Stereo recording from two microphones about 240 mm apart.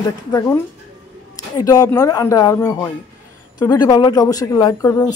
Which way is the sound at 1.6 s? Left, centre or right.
Centre.